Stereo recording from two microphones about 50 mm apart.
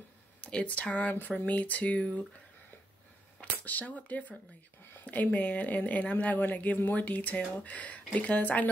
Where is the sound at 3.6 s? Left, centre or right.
Left.